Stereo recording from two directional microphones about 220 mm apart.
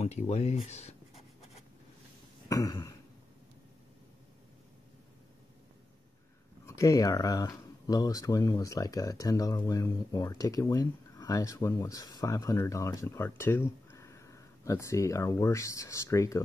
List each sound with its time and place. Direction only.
0.0 s speech: 30° left (ahead or behind)
2.4 s cough: 15° left (ahead or behind)
6.6 s speech: 15° left (ahead or behind)